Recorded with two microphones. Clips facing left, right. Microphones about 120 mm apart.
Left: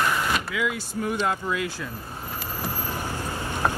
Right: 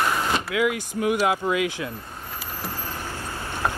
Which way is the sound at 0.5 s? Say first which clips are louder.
Right 5 dB; 65° right (ahead or behind).